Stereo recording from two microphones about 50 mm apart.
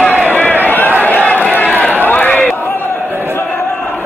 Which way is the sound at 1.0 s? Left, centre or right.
Left.